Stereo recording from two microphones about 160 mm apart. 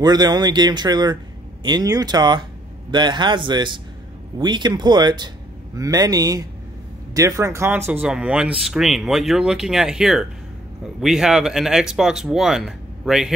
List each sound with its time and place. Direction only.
0.0 s speech: 25° right (ahead or behind); by 13.3 s 5° right (ahead or behind)